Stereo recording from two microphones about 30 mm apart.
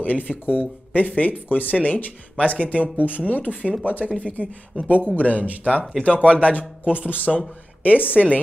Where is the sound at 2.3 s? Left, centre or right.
Left.